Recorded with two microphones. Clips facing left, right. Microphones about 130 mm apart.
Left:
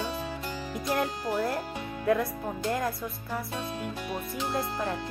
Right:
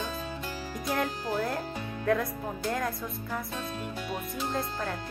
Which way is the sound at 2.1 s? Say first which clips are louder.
Left 2 dB; 5° left (ahead or behind).